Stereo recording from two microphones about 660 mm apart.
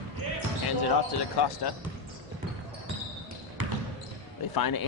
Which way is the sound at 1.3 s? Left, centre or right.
Left.